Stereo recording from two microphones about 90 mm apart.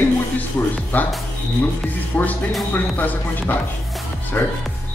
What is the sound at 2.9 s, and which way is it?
Speech, 20° left (ahead or behind).